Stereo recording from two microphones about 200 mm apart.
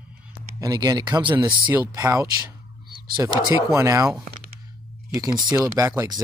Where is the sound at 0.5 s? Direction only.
20° right (ahead or behind).